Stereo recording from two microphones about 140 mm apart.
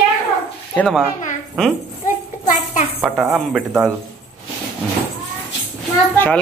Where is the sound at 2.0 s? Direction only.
75° left (ahead or behind).